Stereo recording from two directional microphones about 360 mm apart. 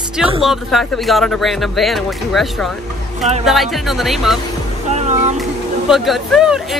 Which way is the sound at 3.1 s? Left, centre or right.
Centre.